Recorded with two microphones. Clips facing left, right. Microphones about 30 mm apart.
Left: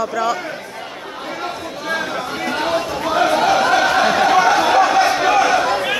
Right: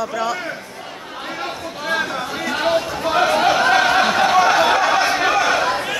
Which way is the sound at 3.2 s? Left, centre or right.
Centre.